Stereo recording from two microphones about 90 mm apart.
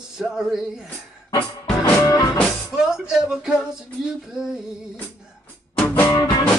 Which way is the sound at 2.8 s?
10° right (ahead or behind).